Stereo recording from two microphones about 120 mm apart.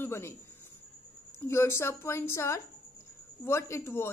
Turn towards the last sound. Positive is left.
turn(degrees=20)  # may be behind; listen again after turning